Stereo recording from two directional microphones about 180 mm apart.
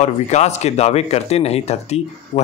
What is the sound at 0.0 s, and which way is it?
Speech, 40° left (ahead or behind).